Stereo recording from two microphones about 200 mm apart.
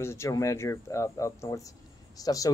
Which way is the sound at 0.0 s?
15° left (ahead or behind).